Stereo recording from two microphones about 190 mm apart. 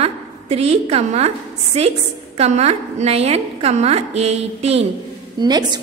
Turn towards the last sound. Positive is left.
turn(degrees=-20)  # may be behind; listen again after turning